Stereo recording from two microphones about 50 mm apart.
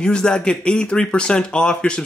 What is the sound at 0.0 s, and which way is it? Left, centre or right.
Speech, centre.